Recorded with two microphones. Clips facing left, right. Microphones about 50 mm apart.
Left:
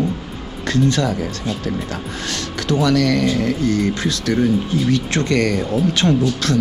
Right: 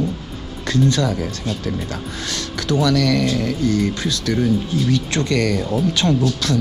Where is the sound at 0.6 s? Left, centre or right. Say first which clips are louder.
Left 1 dB; left.